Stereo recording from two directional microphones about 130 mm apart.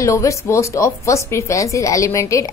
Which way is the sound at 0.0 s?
25° left (ahead or behind).